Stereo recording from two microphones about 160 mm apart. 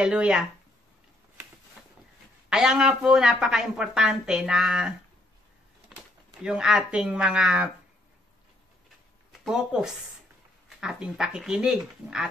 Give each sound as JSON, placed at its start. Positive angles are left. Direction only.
{"t": 0.0, "sound": "a woman's voice", "side_deg": -5}
{"t": 2.5, "sound": "a woman's voice", "side_deg": -5}
{"t": 9.4, "sound": "a woman's voice", "side_deg": -5}